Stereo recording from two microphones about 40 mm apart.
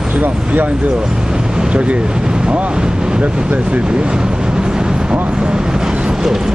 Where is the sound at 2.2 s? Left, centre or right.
Centre.